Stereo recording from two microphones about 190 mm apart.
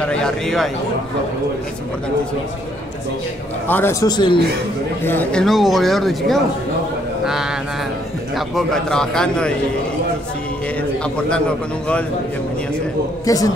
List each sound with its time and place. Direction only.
0.0 s speech: 5° left (ahead or behind)
3.6 s a man's voice: 10° left (ahead or behind)
5.0 s speech: 10° left (ahead or behind)
13.2 s a man's voice: 20° left (ahead or behind)